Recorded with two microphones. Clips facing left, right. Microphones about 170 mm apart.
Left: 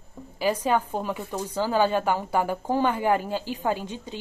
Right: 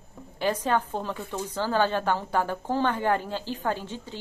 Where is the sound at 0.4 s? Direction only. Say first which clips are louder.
Left 2 dB; 10° left (ahead or behind).